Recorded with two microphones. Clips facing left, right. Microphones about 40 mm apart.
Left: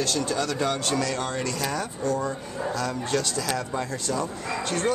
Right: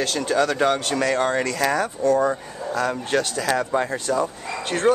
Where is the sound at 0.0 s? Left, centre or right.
Right.